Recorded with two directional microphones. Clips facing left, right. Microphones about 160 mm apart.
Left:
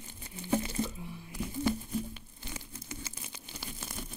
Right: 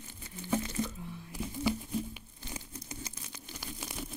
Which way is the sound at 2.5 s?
35° right (ahead or behind).